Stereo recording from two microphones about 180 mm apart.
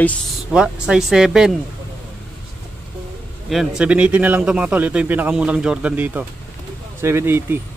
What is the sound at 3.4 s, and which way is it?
Speech, centre (ahead or behind).